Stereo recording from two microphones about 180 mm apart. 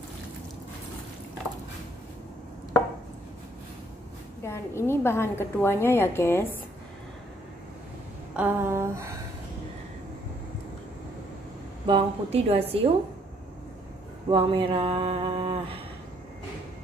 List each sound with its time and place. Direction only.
4.4 s a woman's voice: 15° left (ahead or behind)
8.4 s a sound: 10° right (ahead or behind)
11.8 s a woman's voice: 30° right (ahead or behind)
14.3 s mantra: 30° right (ahead or behind)